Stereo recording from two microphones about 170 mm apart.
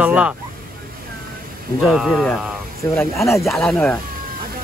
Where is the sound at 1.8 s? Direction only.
Centre (ahead or behind).